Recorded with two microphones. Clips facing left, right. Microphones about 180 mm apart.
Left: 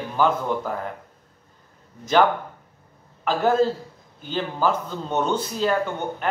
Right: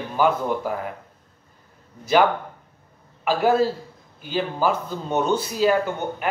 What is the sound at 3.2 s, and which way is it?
A man's voice, 10° right (ahead or behind).